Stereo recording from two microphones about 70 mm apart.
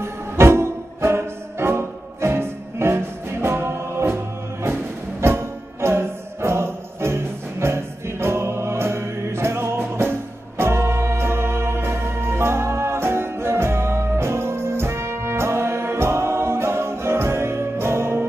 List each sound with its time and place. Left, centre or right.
0.0 s music: right
5.2 s music: right